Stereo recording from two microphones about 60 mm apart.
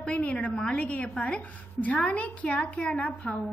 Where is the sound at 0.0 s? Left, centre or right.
Centre.